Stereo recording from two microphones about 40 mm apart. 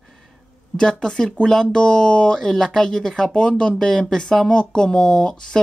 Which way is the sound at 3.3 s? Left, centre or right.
Left.